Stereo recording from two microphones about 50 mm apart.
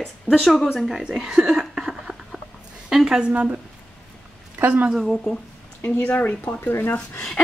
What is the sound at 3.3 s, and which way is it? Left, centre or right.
Speech, right.